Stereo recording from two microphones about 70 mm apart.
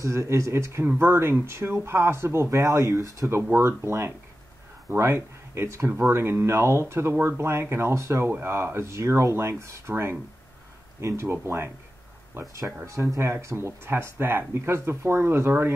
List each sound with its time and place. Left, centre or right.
0.0 s speech: right
3.5 s speech: right
12.8 s speech: right